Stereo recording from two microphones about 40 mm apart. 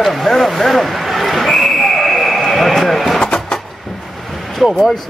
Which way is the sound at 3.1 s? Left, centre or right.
Centre.